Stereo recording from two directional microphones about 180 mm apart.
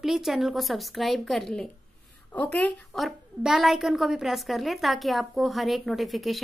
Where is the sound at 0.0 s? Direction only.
Centre (ahead or behind).